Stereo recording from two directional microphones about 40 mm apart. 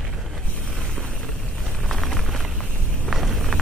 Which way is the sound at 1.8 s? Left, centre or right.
Centre.